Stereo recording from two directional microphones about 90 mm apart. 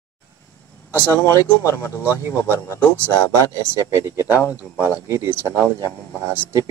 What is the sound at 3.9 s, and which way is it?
Speech, 30° right (ahead or behind).